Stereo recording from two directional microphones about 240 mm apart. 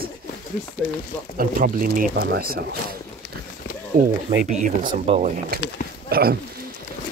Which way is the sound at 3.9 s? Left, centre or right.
Right.